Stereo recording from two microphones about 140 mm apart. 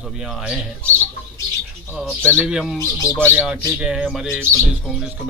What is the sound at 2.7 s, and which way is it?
Speech, 25° left (ahead or behind).